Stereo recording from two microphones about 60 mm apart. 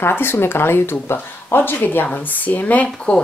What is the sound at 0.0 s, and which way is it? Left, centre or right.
Speech, left.